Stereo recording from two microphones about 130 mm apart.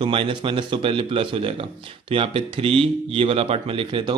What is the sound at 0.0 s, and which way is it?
A man's voice, 40° right (ahead or behind).